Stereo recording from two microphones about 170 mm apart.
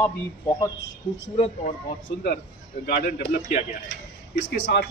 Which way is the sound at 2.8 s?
55° left (ahead or behind).